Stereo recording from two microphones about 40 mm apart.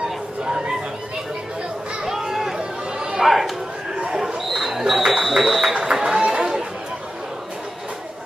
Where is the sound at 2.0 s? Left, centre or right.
Centre.